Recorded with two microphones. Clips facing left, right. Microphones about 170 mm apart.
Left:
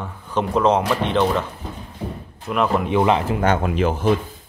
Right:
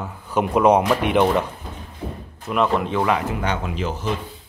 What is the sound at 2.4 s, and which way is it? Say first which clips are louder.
Speech: even; centre (ahead or behind).